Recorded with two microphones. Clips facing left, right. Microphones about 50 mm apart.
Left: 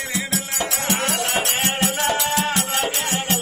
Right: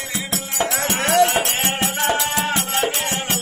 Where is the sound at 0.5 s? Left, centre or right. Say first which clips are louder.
Right 4 dB; right.